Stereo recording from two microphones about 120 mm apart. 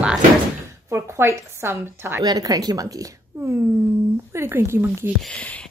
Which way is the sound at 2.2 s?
30° right (ahead or behind).